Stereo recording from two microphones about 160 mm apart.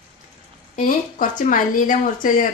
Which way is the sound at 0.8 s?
55° left (ahead or behind).